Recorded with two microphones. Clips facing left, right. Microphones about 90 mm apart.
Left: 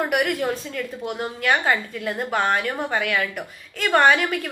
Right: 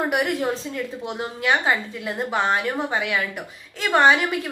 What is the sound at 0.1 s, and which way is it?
A woman's voice, 30° right (ahead or behind).